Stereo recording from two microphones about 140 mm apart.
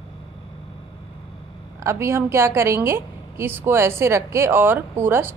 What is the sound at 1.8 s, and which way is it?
A woman's voice, 20° right (ahead or behind).